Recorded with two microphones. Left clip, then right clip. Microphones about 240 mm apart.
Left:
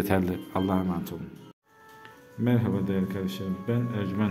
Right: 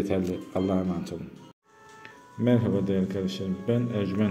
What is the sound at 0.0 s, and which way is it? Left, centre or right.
Speech, left.